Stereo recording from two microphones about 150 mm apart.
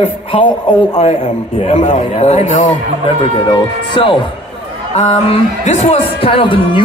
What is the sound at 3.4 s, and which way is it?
Speech, 35° left (ahead or behind).